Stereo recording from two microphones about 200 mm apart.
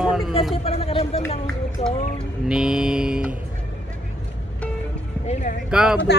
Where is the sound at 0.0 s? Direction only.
Centre (ahead or behind).